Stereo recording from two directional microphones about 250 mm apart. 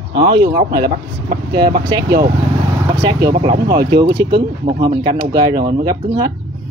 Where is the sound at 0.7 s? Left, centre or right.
Right.